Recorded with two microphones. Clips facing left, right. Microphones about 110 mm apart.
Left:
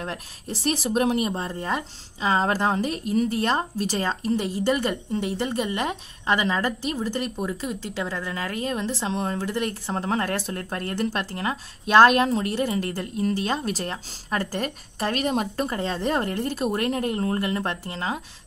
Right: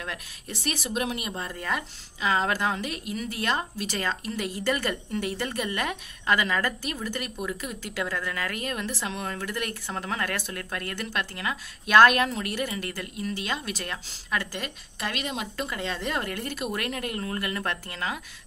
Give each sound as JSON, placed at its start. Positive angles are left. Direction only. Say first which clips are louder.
{"t": 0.0, "sound": "speech", "louder": "left 4 dB", "side_deg": 35}